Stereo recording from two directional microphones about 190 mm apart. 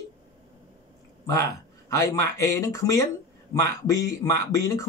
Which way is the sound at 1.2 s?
15° left (ahead or behind).